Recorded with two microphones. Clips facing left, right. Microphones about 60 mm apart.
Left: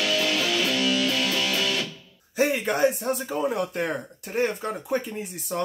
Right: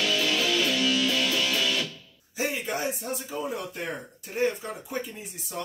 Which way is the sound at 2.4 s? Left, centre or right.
Left.